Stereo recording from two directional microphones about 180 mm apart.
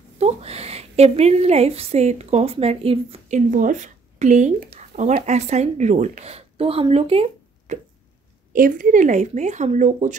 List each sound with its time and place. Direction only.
0.2 s a woman's voice: 35° right (ahead or behind)
8.5 s speech: 50° right (ahead or behind)